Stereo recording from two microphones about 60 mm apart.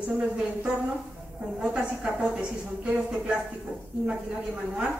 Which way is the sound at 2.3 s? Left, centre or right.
Centre.